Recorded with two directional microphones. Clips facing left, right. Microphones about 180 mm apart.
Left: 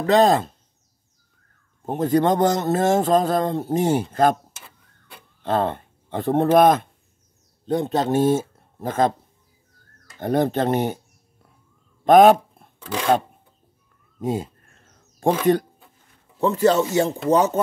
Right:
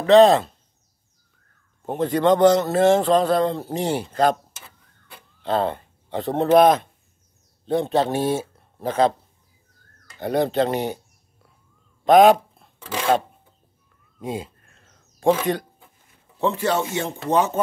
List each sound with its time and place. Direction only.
0.0 s speech: 40° left (ahead or behind)
1.9 s a man's voice: 40° left (ahead or behind)
5.4 s speech: 45° left (ahead or behind)
10.1 s a man's voice: 50° left (ahead or behind)
12.1 s speech: 45° left (ahead or behind)
14.2 s a sound: 45° left (ahead or behind)
16.3 s speech: 40° left (ahead or behind)